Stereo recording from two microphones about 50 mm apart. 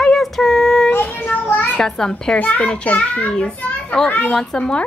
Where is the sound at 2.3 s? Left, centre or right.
Left.